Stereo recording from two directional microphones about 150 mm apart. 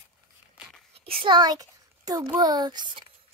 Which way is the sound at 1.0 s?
35° right (ahead or behind).